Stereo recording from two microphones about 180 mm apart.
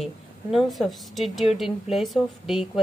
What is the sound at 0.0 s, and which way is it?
A woman's voice, centre (ahead or behind).